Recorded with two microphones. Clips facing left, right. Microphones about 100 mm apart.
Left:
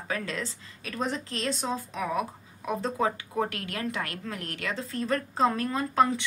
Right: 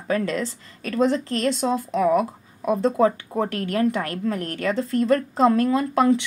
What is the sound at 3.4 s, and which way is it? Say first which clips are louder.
A woman's voice: right 10 dB; 35° right (ahead or behind).